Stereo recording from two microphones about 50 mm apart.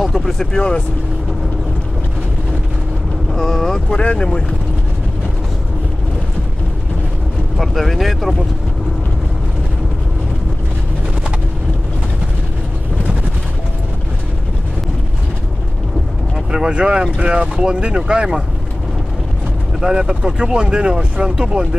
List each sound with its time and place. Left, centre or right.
0.0 s speech: centre
3.3 s speech: centre
4.0 s speech: left
7.5 s speech: centre
16.5 s speech: centre
19.8 s speech: centre